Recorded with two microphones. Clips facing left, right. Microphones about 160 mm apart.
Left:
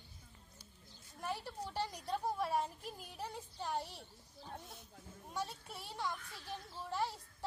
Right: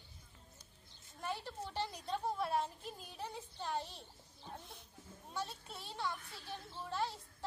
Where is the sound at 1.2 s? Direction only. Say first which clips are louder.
Even; 10° left (ahead or behind).